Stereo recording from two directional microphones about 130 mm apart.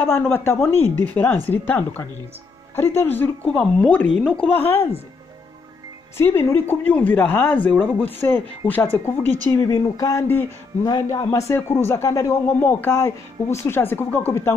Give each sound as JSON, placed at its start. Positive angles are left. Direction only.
{"t": 0.0, "sound": "speech", "side_deg": 15}
{"t": 6.1, "sound": "speech", "side_deg": 20}